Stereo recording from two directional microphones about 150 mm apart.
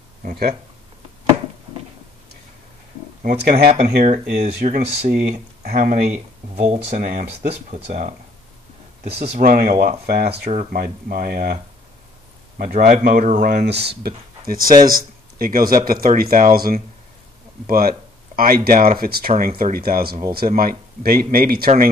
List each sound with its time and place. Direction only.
0.2 s speech: 90° right
3.4 s speech: 90° right
3.7 s speech: 45° right (ahead or behind)
7.0 s speech: 60° right (ahead or behind)
7.7 s speech: 45° right (ahead or behind)
9.4 s speech: 60° right (ahead or behind)
10.0 s speech: 90° right
10.5 s speech: 55° right (ahead or behind)
10.8 s speech: 80° right
12.5 s speech: 60° right (ahead or behind); by 18.9 s 75° right (ahead or behind)
18.9 s speech: 90° right
20.3 s speech: 75° right (ahead or behind)